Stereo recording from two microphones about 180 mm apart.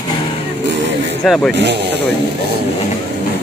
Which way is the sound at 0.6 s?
70° right (ahead or behind).